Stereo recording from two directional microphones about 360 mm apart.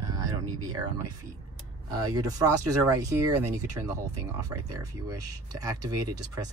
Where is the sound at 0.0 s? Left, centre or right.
Centre.